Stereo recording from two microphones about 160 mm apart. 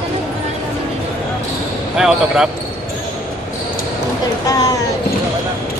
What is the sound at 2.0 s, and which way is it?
Speech, 5° right (ahead or behind).